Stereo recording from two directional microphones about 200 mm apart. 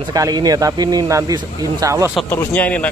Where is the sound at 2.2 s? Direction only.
10° left (ahead or behind).